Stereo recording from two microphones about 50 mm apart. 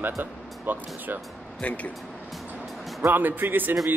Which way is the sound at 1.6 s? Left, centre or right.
Left.